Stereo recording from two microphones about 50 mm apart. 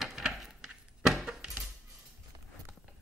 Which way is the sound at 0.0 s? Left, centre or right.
Centre.